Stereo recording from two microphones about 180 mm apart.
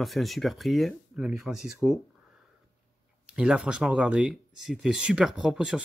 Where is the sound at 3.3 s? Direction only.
5° right (ahead or behind).